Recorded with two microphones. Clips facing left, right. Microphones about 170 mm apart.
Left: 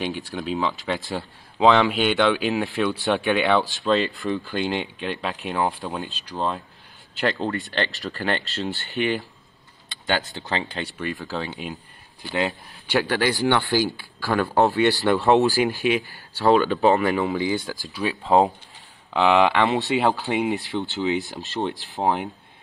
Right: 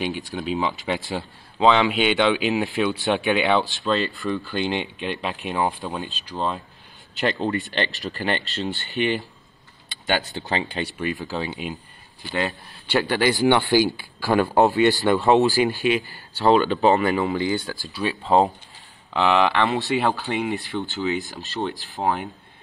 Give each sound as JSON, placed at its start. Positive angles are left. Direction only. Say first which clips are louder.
{"t": 0.3, "sound": "speech", "louder": "even", "side_deg": -5}
{"t": 1.6, "sound": "speech", "louder": "left 1 dB", "side_deg": 0}
{"t": 3.8, "sound": "speech", "louder": "left 2 dB", "side_deg": 15}
{"t": 4.5, "sound": "speech", "louder": "even", "side_deg": 0}
{"t": 7.7, "sound": "speech", "louder": "even", "side_deg": -15}
{"t": 8.9, "sound": "speech", "louder": "right 1 dB", "side_deg": 0}
{"t": 10.0, "sound": "speech", "louder": "right 1 dB", "side_deg": -15}
{"t": 12.3, "sound": "speech", "louder": "left 1 dB", "side_deg": 10}
{"t": 13.5, "sound": "speech", "louder": "right 3 dB", "side_deg": -20}
{"t": 14.6, "sound": "speech", "louder": "even", "side_deg": 0}
{"t": 17.8, "sound": "speech", "louder": "even", "side_deg": 15}